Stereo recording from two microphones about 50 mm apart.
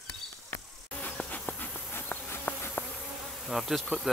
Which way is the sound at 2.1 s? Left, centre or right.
Left.